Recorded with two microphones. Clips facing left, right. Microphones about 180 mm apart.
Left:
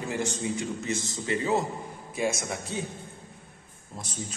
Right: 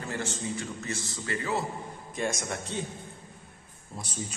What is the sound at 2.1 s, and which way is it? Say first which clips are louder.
Speech: left 2 dB; 5° left (ahead or behind).